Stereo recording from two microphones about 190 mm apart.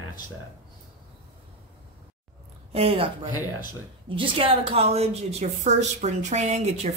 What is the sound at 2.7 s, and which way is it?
A woman's voice, 30° right (ahead or behind).